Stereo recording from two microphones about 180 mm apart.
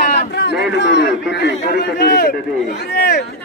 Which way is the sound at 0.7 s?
80° left.